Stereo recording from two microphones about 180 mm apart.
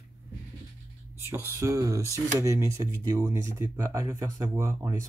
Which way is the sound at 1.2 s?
15° right (ahead or behind).